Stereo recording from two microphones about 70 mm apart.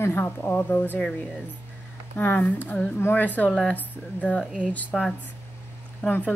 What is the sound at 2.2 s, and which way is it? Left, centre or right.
A woman's voice, left.